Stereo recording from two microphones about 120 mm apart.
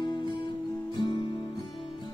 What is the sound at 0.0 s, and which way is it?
Music, 35° left (ahead or behind).